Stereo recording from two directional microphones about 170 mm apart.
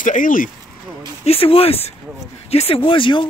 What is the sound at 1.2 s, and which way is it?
Speech, 35° left (ahead or behind).